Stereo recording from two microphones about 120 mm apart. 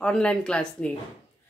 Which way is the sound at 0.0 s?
10° left (ahead or behind).